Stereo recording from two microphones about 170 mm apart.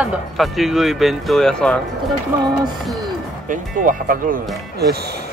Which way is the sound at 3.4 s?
55° right (ahead or behind).